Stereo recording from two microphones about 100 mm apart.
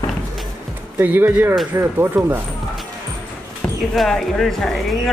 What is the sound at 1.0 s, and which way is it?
Speech, 20° right (ahead or behind).